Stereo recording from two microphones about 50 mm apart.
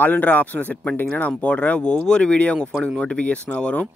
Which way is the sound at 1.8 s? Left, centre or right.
Centre.